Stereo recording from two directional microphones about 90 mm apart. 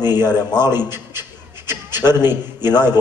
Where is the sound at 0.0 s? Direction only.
50° left (ahead or behind).